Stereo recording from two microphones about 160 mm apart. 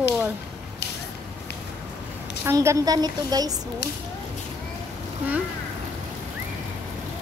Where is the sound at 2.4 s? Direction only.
15° right (ahead or behind).